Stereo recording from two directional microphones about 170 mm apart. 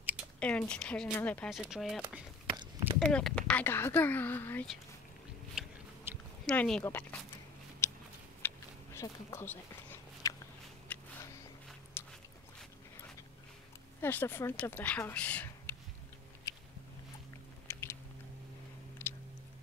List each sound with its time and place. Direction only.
0.4 s speech: 5° left (ahead or behind)
3.0 s speech: 5° left (ahead or behind)
5.6 s biting: 5° right (ahead or behind)
6.1 s a sound: 15° right (ahead or behind)
6.4 s speech: 5° left (ahead or behind)
7.8 s a sound: 15° left (ahead or behind)
12.0 s biting: 15° left (ahead or behind)
14.0 s speech: 15° left (ahead or behind)
16.5 s a sound: 20° left (ahead or behind)
17.6 s chewing: 15° left (ahead or behind)